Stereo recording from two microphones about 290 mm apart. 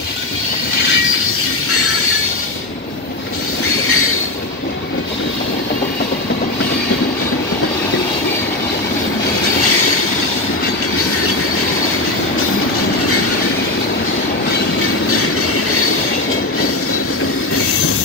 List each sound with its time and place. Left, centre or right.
3.8 s train: left
15.0 s train: left